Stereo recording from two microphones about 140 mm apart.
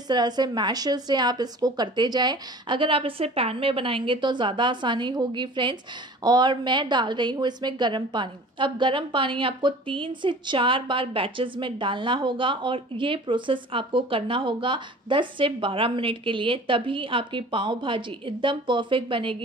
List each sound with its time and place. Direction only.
0.1 s a woman's voice: 30° right (ahead or behind)